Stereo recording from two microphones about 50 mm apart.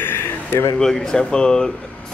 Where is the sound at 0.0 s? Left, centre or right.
Left.